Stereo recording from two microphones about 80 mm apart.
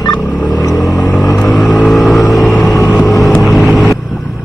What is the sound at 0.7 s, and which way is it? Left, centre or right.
Vehicle, centre.